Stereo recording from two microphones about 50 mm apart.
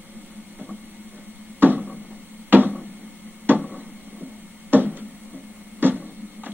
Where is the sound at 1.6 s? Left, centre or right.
Right.